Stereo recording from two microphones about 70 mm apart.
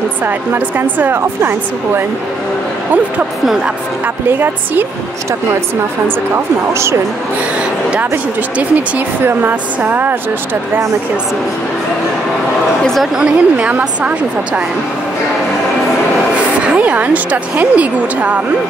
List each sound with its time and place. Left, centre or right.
0.2 s speech: right
4.3 s speech: right
6.0 s speech: right
8.0 s speech: right
12.8 s a woman's voice: centre
13.1 s a woman's voice: centre
16.6 s speech: centre